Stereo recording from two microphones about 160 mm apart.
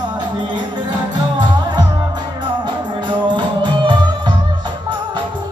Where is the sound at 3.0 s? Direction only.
30° right (ahead or behind).